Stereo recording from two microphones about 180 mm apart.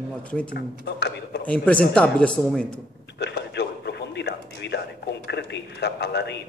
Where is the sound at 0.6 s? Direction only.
70° left (ahead or behind).